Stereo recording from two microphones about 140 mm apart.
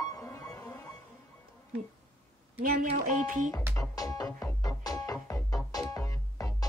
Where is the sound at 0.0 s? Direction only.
25° left (ahead or behind).